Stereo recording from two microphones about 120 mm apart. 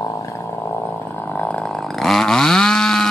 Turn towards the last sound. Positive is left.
turn(degrees=5)  # may be behind; listen again after turning